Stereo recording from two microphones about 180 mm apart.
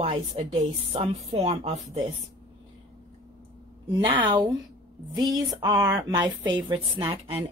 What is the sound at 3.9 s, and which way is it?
A woman's voice, 30° right (ahead or behind).